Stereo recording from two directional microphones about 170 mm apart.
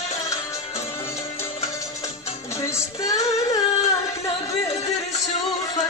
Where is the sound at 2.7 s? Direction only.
20° left (ahead or behind).